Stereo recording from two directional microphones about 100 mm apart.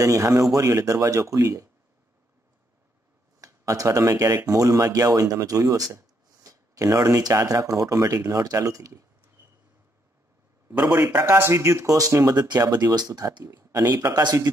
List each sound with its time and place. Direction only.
0.0 s speech: 35° right (ahead or behind)
3.3 s speech: 35° right (ahead or behind)
10.9 s speech: 20° right (ahead or behind); by 14.5 s 40° right (ahead or behind)